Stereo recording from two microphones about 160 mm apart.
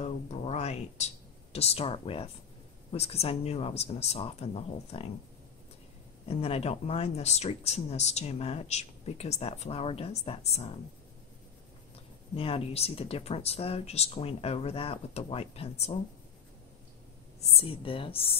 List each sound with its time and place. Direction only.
0.0 s speech: 45° left (ahead or behind)
6.2 s speech: 40° left (ahead or behind)
12.4 s speech: 35° left (ahead or behind)
17.4 s speech: 40° left (ahead or behind)